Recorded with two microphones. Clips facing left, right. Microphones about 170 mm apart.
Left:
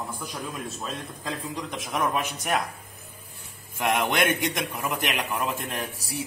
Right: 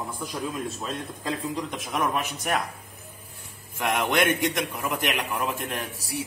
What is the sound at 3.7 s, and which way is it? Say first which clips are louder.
Speech: even; 5° left (ahead or behind).